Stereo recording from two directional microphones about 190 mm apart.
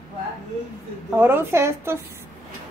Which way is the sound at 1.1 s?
10° right (ahead or behind).